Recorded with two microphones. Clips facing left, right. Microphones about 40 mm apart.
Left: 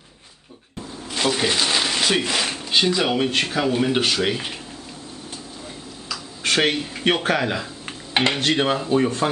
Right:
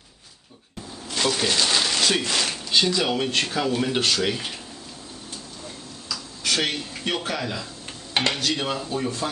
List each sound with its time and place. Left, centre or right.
1.1 s speech: centre
6.0 s a sound: left
7.2 s speech: left
8.1 s dishes: left
8.4 s speech: left